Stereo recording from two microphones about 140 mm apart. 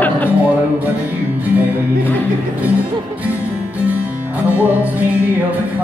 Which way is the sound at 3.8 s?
10° right (ahead or behind).